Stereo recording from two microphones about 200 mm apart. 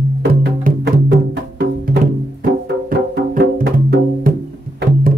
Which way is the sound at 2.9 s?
50° right (ahead or behind).